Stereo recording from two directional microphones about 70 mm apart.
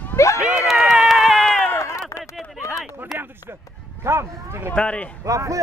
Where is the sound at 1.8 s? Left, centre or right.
Left.